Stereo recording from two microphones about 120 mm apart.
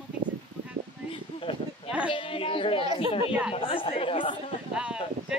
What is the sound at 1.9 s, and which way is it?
Speech, 10° right (ahead or behind).